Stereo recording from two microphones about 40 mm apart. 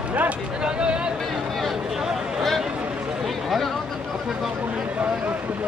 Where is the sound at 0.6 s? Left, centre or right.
Right.